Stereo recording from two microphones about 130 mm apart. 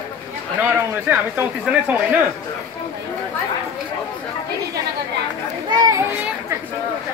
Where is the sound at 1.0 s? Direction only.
15° right (ahead or behind).